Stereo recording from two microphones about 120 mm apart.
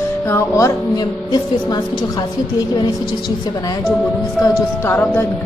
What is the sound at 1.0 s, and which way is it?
Speech, 35° left (ahead or behind).